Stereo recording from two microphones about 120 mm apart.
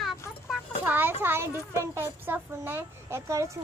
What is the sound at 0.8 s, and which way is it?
A woman's voice, 15° right (ahead or behind).